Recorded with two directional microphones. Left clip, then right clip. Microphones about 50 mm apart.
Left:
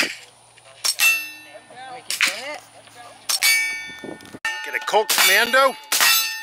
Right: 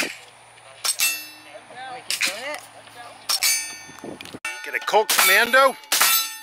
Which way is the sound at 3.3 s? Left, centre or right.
Left.